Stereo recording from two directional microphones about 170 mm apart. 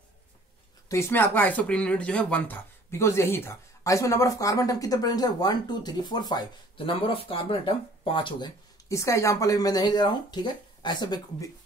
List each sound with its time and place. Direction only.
0.8 s speech: 15° left (ahead or behind)
8.8 s speech: 20° left (ahead or behind)